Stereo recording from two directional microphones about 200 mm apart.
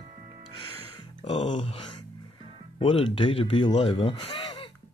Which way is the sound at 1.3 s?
35° left (ahead or behind).